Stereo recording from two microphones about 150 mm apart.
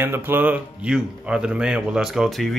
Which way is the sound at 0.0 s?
15° right (ahead or behind).